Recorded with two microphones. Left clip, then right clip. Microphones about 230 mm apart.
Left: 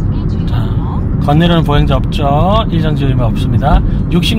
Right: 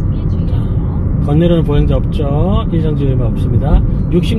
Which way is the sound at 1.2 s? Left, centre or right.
Left.